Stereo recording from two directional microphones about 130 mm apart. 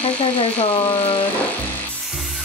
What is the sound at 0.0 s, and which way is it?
Speech, 45° left (ahead or behind).